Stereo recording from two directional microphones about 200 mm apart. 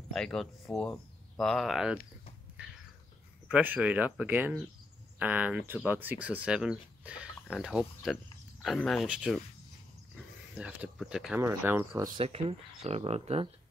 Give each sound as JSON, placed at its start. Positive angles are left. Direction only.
{"t": 0.1, "sound": "speech", "side_deg": 5}
{"t": 3.4, "sound": "speech", "side_deg": -5}
{"t": 12.2, "sound": "speech", "side_deg": -30}